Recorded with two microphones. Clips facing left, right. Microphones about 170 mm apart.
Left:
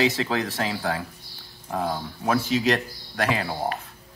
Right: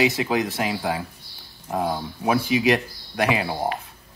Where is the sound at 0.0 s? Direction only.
15° right (ahead or behind).